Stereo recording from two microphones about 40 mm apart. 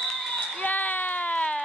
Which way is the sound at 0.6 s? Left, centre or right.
Left.